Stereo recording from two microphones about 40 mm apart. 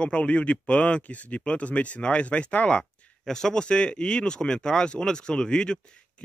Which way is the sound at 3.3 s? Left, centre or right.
Centre.